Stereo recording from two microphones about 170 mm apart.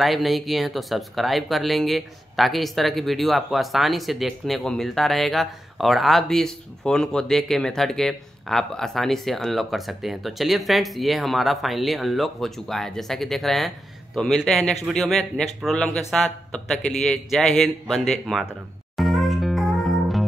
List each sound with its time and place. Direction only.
0.0 s speech: centre (ahead or behind)
18.9 s music: centre (ahead or behind)